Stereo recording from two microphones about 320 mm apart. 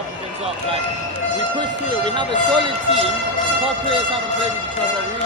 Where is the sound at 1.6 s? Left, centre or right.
Centre.